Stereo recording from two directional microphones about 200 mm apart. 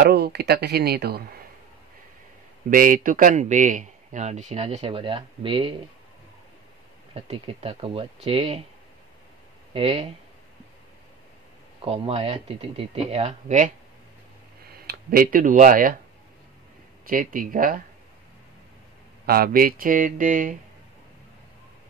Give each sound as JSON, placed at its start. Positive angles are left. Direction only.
{"t": 0.0, "sound": "speech", "side_deg": -55}
{"t": 2.7, "sound": "a man's voice", "side_deg": -45}
{"t": 7.2, "sound": "speech", "side_deg": -30}
{"t": 9.8, "sound": "speech", "side_deg": -30}
{"t": 11.8, "sound": "a man's voice", "side_deg": -30}
{"t": 14.7, "sound": "speech", "side_deg": -50}
{"t": 17.0, "sound": "speech", "side_deg": -45}
{"t": 19.2, "sound": "speech", "side_deg": -50}